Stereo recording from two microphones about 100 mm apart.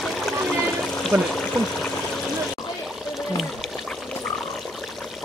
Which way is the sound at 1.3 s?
5° left (ahead or behind).